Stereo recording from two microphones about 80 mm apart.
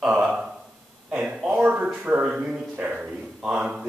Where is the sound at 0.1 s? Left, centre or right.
Centre.